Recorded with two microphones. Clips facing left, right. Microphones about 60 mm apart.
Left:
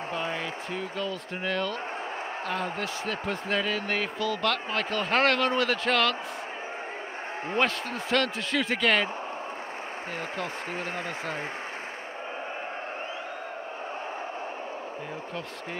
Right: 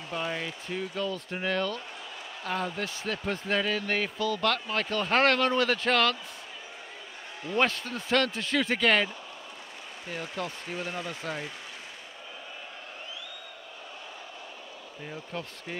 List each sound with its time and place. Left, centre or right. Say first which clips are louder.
0.1 s basketball bounce: right 1 dB; left
0.7 s speech: right 3 dB; centre
2.8 s speech: left 2 dB; centre
7.5 s speech: even; centre
10.7 s speech: left 2 dB; left